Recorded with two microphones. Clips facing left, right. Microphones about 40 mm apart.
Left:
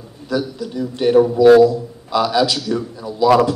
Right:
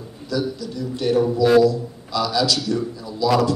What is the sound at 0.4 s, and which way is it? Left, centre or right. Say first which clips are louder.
A man's voice: right 1 dB; left.